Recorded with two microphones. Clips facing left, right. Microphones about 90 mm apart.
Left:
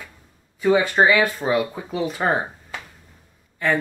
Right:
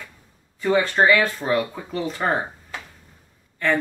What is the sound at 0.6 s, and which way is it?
Speech, 10° left (ahead or behind).